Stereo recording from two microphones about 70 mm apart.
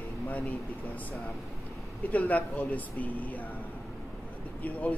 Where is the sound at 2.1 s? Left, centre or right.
Left.